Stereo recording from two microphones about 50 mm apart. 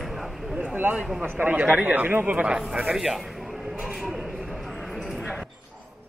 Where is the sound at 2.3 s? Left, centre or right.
Right.